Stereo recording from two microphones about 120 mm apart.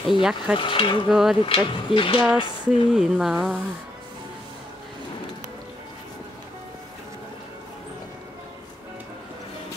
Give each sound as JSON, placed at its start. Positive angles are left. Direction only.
{"t": 0.1, "sound": "speech", "side_deg": -5}
{"t": 0.6, "sound": "speech", "side_deg": 45}
{"t": 1.0, "sound": "speech", "side_deg": -5}
{"t": 1.4, "sound": "speech", "side_deg": 45}
{"t": 2.3, "sound": "a sound", "side_deg": 40}
{"t": 2.9, "sound": "speech", "side_deg": -5}